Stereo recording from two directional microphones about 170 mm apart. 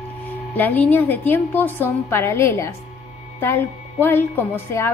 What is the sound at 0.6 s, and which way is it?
A woman's voice, 10° left (ahead or behind).